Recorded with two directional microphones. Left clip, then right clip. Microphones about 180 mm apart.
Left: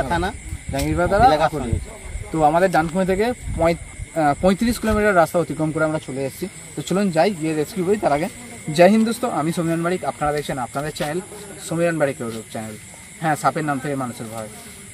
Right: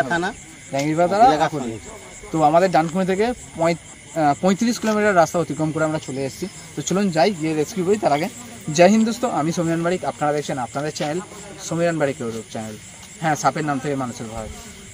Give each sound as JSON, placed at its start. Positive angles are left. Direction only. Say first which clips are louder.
{"t": 0.1, "sound": "speech", "louder": "even", "side_deg": 20}
{"t": 0.8, "sound": "speech", "louder": "right 1 dB", "side_deg": -15}
{"t": 2.3, "sound": "speech", "louder": "right 1 dB", "side_deg": -15}
{"t": 2.9, "sound": "speech", "louder": "left 1 dB", "side_deg": 0}